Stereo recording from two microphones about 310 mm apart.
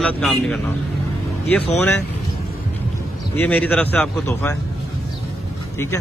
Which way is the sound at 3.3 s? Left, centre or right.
Centre.